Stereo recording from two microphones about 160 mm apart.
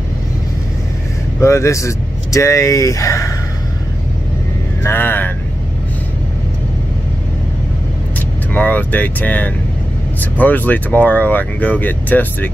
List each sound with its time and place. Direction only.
1.4 s speech: 20° left (ahead or behind)
4.8 s speech: 15° left (ahead or behind)
8.5 s speech: 10° left (ahead or behind)